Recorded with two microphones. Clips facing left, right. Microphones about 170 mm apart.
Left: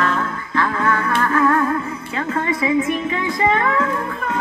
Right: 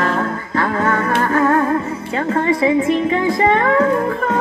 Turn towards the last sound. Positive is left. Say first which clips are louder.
# right 7 dB
turn(degrees=-35)  # may be behind; listen again after turning